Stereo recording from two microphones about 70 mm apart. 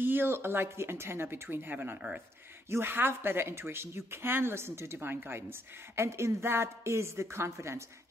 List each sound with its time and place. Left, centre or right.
0.0 s speech: right
2.0 s speech: centre
2.7 s speech: right